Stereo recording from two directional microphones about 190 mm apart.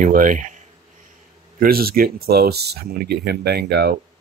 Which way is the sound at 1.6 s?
50° right (ahead or behind).